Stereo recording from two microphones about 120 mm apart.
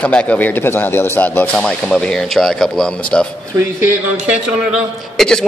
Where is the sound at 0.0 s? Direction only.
10° left (ahead or behind).